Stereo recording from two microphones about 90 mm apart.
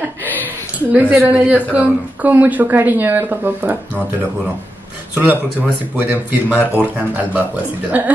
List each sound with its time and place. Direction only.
0.7 s a woman's voice: 15° right (ahead or behind)